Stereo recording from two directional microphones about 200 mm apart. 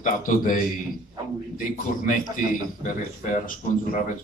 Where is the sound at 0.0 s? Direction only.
40° left (ahead or behind).